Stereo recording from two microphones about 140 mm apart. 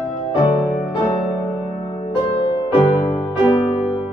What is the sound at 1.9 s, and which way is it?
Music, 35° left (ahead or behind).